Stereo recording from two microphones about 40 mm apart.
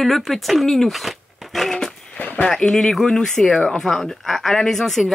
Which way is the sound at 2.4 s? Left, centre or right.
Centre.